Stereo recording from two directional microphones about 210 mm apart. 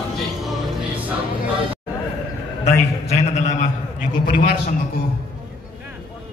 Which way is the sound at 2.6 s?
30° left (ahead or behind).